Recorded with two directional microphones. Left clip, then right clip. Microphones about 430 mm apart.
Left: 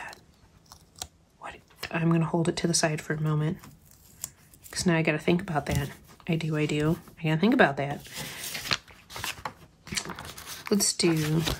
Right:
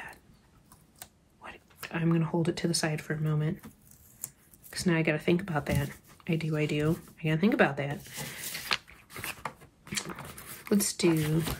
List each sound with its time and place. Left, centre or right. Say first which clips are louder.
0.9 s speech: left 10 dB; centre
4.6 s speech: left 3 dB; centre
9.8 s a sound: left 3 dB; centre
10.6 s speech: left 2 dB; centre